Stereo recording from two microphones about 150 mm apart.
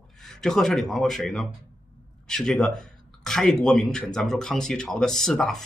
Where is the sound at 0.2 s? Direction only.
Centre (ahead or behind).